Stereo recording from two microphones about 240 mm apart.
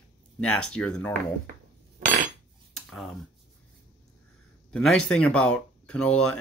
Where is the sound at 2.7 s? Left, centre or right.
Centre.